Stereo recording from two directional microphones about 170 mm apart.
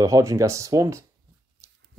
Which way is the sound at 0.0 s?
20° right (ahead or behind).